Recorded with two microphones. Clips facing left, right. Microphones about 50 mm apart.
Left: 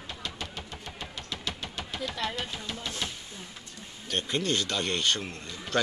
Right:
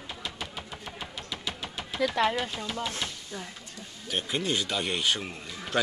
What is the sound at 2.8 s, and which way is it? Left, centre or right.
Speech, centre.